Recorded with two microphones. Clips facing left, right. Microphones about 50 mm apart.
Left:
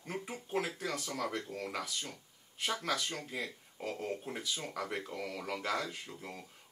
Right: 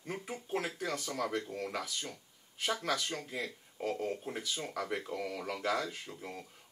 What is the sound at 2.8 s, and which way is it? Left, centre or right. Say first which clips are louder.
Speech: right 1 dB; centre.